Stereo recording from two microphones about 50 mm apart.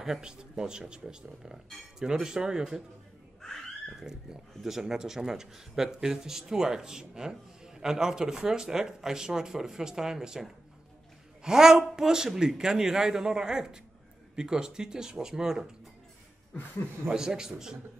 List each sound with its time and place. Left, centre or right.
0.0 s a man's voice: centre
3.9 s a man's voice: centre
11.4 s a man's voice: centre
17.1 s a man's voice: centre